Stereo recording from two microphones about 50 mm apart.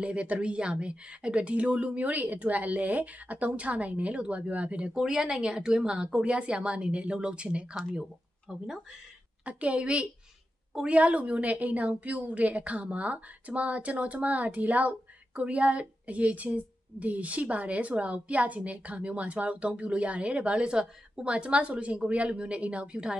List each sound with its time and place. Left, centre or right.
0.0 s a woman's voice: right
7.7 s speech: centre
9.4 s a woman's voice: right
10.9 s a woman's voice: right